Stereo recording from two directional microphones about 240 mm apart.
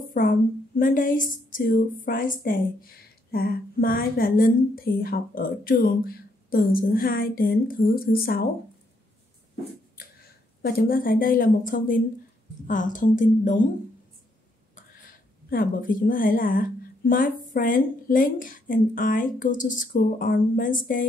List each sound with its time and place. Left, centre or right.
0.1 s speech: left
10.6 s speech: left
15.0 s speech: left